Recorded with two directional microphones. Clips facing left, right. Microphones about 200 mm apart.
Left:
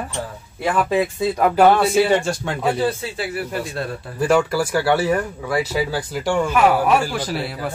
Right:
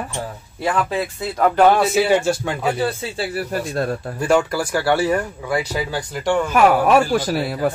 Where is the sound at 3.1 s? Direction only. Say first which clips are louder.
Right 1 dB; 40° right (ahead or behind).